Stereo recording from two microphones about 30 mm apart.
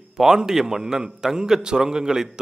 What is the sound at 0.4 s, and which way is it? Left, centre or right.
A man's voice, centre.